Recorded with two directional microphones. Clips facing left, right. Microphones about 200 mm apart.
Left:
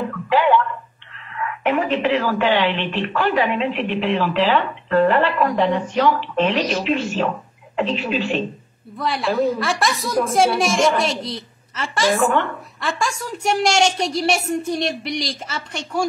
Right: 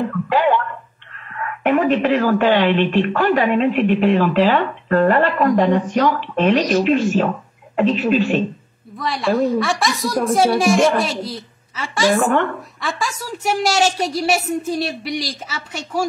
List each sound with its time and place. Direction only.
0.3 s a sound: 45° right (ahead or behind)
1.3 s a woman's voice: 45° right (ahead or behind)
8.9 s a woman's voice: centre (ahead or behind)